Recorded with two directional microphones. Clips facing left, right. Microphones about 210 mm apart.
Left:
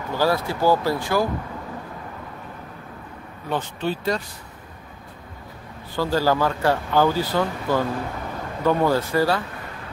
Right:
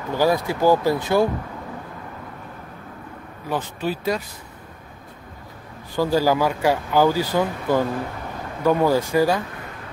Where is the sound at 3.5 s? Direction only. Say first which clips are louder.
Even; 5° right (ahead or behind).